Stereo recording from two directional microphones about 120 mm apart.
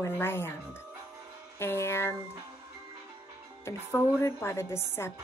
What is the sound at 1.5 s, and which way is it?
Speech, 20° left (ahead or behind).